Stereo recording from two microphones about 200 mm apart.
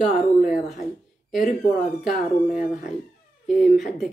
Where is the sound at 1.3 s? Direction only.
45° left (ahead or behind).